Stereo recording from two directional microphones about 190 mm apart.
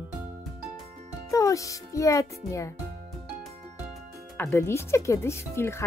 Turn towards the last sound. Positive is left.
turn(degrees=15)  # may be behind; listen again after turning